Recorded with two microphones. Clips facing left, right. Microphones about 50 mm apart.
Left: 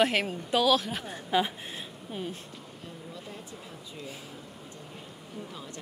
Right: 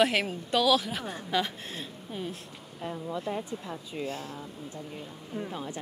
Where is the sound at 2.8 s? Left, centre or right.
Right.